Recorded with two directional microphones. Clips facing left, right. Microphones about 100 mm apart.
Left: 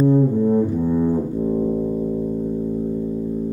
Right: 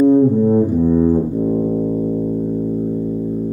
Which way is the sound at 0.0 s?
15° right (ahead or behind).